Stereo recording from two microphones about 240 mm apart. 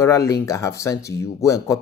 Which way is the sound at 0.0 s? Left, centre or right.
Centre.